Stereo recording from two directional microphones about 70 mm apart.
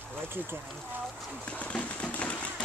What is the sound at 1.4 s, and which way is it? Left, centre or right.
Fireworks, centre.